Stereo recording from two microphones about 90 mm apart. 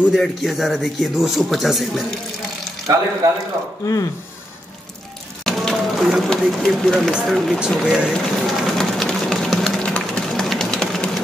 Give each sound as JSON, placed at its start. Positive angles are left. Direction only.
{"t": 0.1, "sound": "speech", "side_deg": 0}
{"t": 3.8, "sound": "speech", "side_deg": 40}
{"t": 5.4, "sound": "speech", "side_deg": 5}
{"t": 8.1, "sound": "sewing machine", "side_deg": 0}